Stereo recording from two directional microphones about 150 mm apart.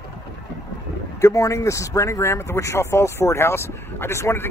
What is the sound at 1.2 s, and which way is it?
Speech, 20° left (ahead or behind).